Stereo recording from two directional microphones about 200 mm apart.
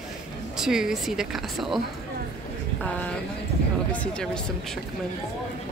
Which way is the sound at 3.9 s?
5° left (ahead or behind).